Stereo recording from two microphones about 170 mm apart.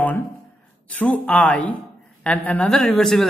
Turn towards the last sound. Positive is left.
turn(degrees=0)  # may be behind; listen again after turning